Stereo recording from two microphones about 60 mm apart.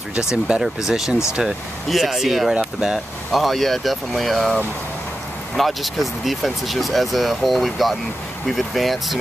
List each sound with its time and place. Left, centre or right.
0.1 s speech: centre
5.6 s speech: centre